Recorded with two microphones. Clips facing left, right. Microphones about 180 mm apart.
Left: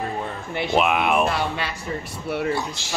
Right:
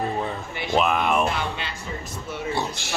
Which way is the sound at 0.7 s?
5° left (ahead or behind).